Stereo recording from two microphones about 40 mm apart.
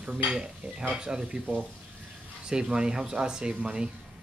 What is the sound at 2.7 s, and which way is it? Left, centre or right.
Speech, centre.